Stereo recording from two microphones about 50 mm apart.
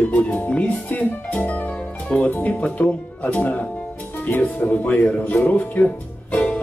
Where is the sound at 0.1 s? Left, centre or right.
Left.